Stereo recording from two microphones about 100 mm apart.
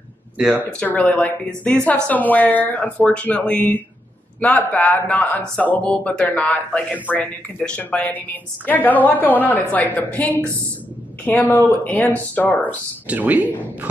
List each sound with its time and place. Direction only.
0.7 s a woman's voice: 10° left (ahead or behind)
12.6 s speech: 15° right (ahead or behind)